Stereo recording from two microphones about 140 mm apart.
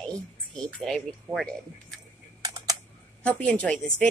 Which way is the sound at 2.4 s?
25° right (ahead or behind).